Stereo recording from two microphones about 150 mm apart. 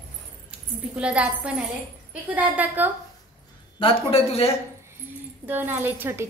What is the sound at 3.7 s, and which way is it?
Speech, 40° left (ahead or behind).